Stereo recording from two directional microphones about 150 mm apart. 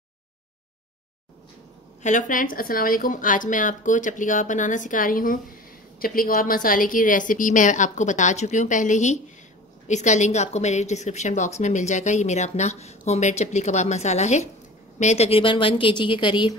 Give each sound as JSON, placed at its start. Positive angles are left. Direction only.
{"t": 2.0, "sound": "a woman's voice", "side_deg": 60}